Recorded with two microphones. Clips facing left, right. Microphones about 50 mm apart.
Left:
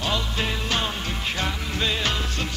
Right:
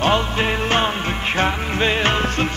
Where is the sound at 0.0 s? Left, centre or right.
Right.